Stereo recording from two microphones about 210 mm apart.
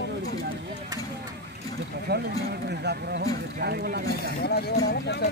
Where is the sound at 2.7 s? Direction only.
50° right (ahead or behind).